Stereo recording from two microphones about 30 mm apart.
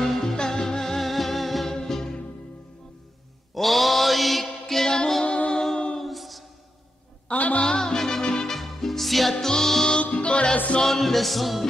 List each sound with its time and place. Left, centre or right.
0.0 s music: centre
1.7 s music: centre
3.5 s mantra: centre
4.8 s music: left
5.2 s music: left
6.0 s a sound: centre
7.2 s a sound: left
7.6 s music: left
8.5 s music: centre
9.3 s music: centre
9.9 s music: left
10.8 s music: centre